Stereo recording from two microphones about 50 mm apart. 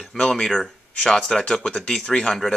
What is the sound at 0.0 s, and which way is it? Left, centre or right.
Speech, centre.